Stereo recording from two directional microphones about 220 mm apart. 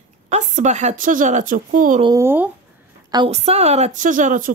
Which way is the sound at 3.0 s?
25° right (ahead or behind).